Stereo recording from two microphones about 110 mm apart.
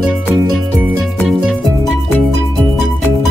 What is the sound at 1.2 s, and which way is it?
Music, centre (ahead or behind).